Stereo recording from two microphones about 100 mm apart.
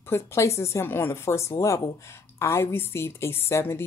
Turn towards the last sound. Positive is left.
turn(degrees=25)  # may be behind; listen again after turning